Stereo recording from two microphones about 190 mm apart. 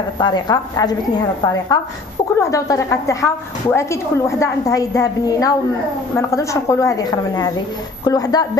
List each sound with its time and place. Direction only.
0.2 s a woman's voice: 20° left (ahead or behind)